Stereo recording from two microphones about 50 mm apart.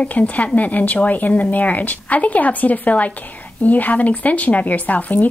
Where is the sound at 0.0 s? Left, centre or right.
Left.